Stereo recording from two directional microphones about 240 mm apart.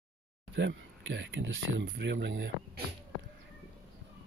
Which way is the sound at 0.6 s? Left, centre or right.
Right.